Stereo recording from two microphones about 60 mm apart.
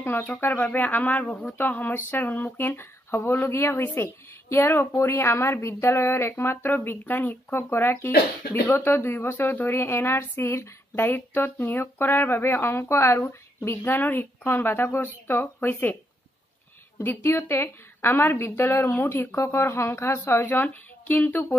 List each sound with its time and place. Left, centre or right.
0.0 s speech: left
7.7 s speech: left
11.0 s speech: left
17.0 s speech: left